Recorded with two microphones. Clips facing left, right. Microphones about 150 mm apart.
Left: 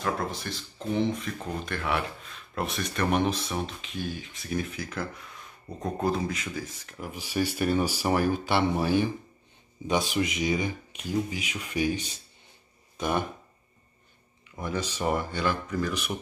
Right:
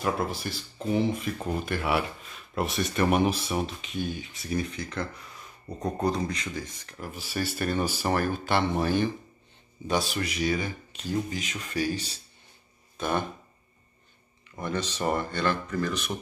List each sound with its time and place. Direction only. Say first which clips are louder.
0.0 s speech: right 2 dB; 5° right (ahead or behind); by 13.3 s 15° left (ahead or behind)
14.5 s speech: right 1 dB; 10° left (ahead or behind)